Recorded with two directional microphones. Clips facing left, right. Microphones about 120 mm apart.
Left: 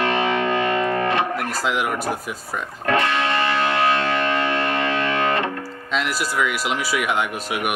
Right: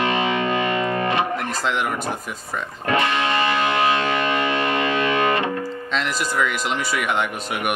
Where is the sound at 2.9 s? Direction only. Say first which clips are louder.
Even; 15° right (ahead or behind).